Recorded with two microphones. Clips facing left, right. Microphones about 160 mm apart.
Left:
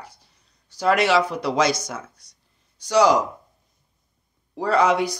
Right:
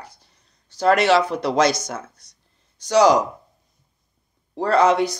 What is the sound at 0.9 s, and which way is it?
Speech, 10° left (ahead or behind).